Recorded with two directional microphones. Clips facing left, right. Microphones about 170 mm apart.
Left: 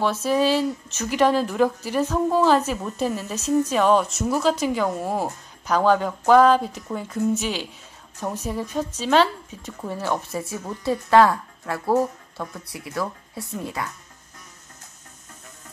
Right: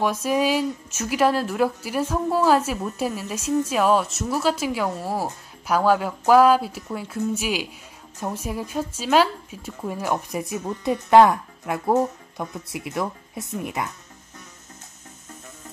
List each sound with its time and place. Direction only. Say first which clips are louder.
0.0 s a woman's voice: left 1 dB; 10° right (ahead or behind)